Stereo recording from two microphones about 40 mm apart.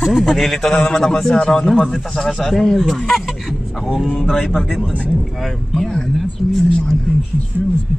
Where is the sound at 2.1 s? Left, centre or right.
Centre.